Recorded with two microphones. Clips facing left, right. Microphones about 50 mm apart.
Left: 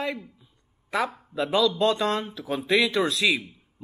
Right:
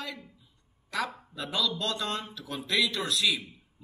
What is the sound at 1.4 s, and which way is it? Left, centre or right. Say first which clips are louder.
Speech: left 8 dB; left.